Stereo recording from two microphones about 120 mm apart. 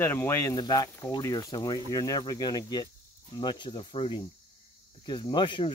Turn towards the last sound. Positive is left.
turn(degrees=40)  # may be behind; listen again after turning